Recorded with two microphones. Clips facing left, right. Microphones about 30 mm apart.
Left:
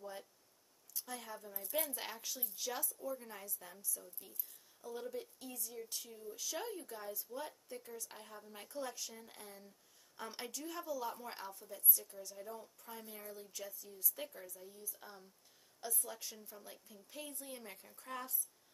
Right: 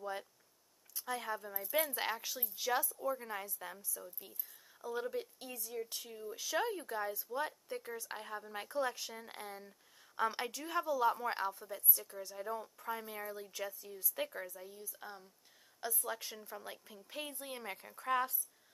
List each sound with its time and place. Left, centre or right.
0.9 s a woman's voice: right
16.0 s a woman's voice: right